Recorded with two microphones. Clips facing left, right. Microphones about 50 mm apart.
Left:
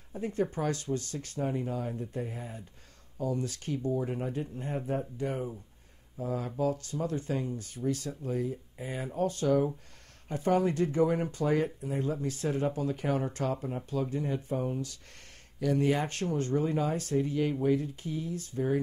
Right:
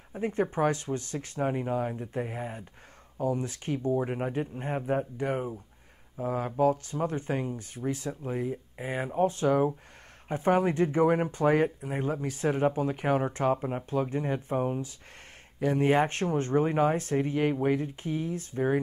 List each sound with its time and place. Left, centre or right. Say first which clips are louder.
0.1 s speech: right 3 dB; right
3.2 s speech: right 3 dB; right
3.7 s speech: right 3 dB; right
12.1 s speech: right 5 dB; right